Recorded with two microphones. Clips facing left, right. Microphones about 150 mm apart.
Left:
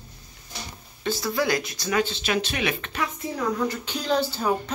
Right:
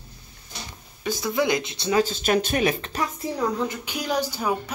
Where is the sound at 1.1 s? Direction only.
20° right (ahead or behind).